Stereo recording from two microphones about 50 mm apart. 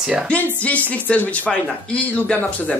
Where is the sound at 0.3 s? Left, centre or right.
Left.